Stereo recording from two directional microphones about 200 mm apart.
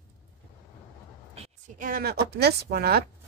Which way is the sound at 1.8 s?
45° right (ahead or behind).